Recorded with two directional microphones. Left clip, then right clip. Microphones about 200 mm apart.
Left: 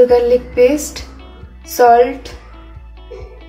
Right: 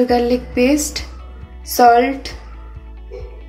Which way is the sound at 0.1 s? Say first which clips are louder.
Left 5 dB; 40° right (ahead or behind).